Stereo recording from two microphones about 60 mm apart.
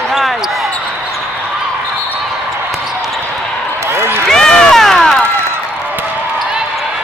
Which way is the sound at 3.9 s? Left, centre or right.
Right.